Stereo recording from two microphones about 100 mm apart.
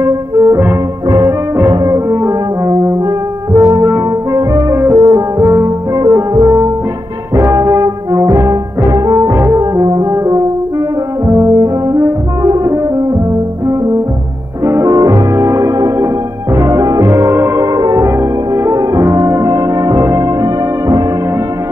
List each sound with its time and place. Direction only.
0.0 s music: 35° right (ahead or behind)
1.7 s french horn: 35° right (ahead or behind)
5.0 s music: 35° right (ahead or behind)
7.3 s brass instrument: 35° right (ahead or behind)
10.1 s french horn: 30° right (ahead or behind)
11.2 s brass instrument: 35° right (ahead or behind)
14.6 s music: 35° right (ahead or behind)